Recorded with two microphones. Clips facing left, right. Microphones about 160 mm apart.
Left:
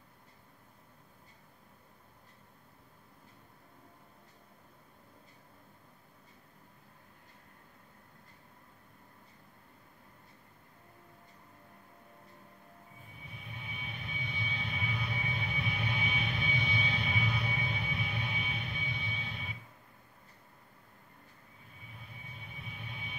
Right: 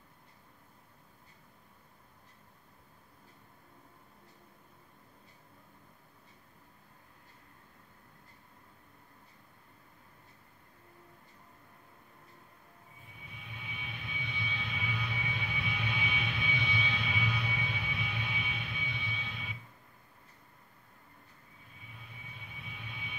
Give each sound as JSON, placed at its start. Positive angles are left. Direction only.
{"t": 13.7, "sound": "vehicle", "side_deg": 40}
{"t": 22.8, "sound": "vehicle", "side_deg": 45}